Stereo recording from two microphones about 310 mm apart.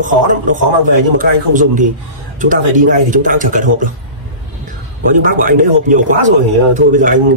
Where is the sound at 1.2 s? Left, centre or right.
Right.